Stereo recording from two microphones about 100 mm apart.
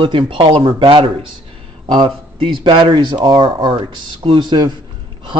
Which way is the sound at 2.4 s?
55° right (ahead or behind).